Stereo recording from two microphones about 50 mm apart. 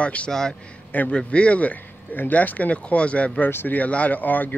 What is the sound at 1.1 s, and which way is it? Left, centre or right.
Speech, left.